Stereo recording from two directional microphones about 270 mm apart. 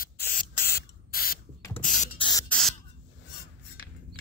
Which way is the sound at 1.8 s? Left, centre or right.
Left.